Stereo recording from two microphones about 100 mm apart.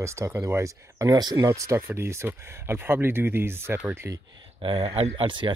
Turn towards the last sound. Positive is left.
turn(degrees=-55)  # may be behind; listen again after turning